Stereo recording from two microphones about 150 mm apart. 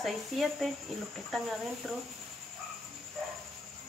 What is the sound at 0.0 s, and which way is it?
Speech, centre (ahead or behind).